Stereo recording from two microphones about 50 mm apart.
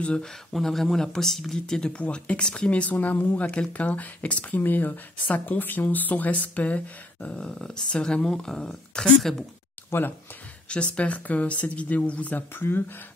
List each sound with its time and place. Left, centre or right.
0.0 s speech: centre
0.5 s speech: centre
2.0 s speech: left
7.4 s speech: centre
9.8 s speech: left
10.7 s speech: left
12.5 s speech: left